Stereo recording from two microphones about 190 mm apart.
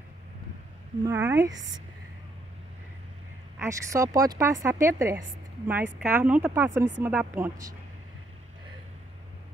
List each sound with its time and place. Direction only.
1.0 s speech: 15° right (ahead or behind)
3.5 s speech: 15° right (ahead or behind)